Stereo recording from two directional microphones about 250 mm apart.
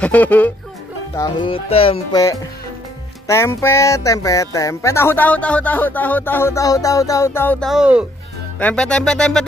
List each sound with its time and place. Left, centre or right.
0.0 s music: centre
1.1 s music: centre
8.5 s speech: centre